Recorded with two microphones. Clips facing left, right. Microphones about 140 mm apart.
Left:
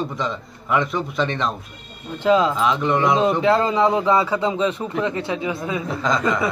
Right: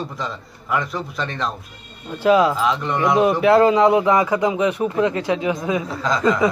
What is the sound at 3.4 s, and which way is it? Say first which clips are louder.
A man's voice: right 4 dB; 15° right (ahead or behind).